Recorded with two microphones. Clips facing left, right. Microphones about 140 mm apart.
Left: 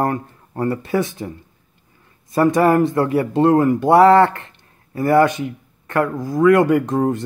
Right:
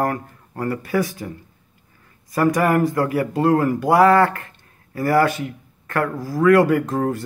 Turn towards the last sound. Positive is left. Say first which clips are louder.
# left 3 dB
turn(degrees=20)  # may be behind; listen again after turning